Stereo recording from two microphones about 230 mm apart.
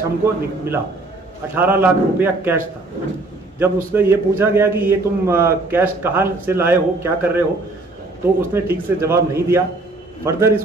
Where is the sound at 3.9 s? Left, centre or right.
Centre.